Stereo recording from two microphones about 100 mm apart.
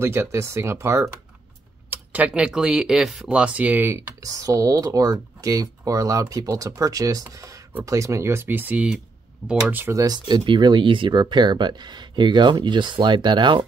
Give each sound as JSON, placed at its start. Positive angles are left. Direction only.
{"t": 0.0, "sound": "speech", "side_deg": -25}
{"t": 1.9, "sound": "speech", "side_deg": -15}
{"t": 4.2, "sound": "speech", "side_deg": -35}
{"t": 9.9, "sound": "speech", "side_deg": -40}